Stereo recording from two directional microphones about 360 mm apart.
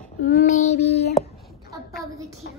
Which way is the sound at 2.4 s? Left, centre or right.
Left.